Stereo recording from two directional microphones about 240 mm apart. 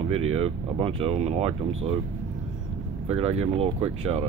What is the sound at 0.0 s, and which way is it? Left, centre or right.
Speech, right.